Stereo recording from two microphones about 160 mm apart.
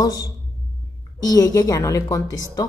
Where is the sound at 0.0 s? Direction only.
20° left (ahead or behind).